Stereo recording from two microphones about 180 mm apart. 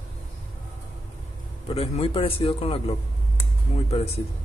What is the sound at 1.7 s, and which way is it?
A man's voice, 35° left (ahead or behind).